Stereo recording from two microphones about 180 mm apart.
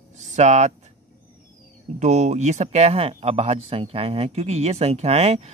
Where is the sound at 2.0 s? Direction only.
40° right (ahead or behind).